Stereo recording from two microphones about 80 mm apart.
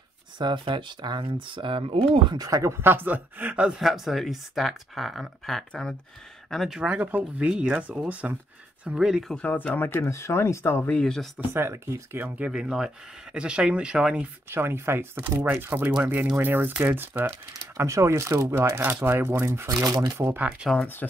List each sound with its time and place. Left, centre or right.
0.4 s speech: right
2.4 s speech: right; by 6.8 s centre
6.8 s speech: centre
8.8 s speech: centre
9.3 s speech: centre
10.9 s speech: centre
11.3 s speech: right
12.4 s speech: centre
14.5 s speech: right
17.7 s speech: right
20.2 s speech: right
20.7 s speech: centre